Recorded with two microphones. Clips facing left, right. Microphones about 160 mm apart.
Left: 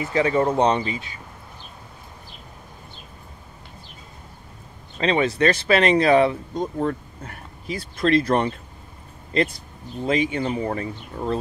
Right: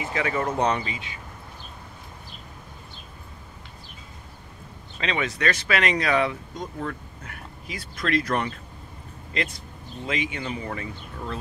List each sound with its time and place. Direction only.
0.1 s speech: 30° left (ahead or behind)
4.9 s speech: 35° left (ahead or behind)
10.0 s speech: 35° left (ahead or behind)